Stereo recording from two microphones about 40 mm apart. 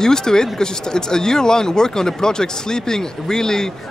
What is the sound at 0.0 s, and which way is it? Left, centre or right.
Speech, centre.